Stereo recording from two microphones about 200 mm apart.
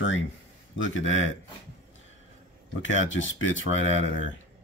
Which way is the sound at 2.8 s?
75° left (ahead or behind).